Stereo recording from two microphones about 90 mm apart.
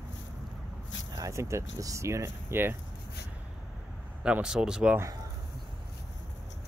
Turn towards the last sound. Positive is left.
turn(degrees=-10)  # may be behind; listen again after turning